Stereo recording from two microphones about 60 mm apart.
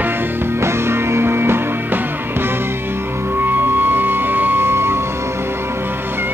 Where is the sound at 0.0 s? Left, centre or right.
Right.